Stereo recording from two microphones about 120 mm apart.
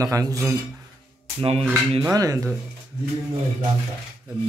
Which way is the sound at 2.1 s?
30° right (ahead or behind).